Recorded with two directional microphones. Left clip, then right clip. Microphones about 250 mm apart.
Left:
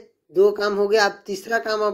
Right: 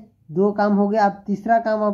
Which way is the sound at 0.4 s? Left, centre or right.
Left.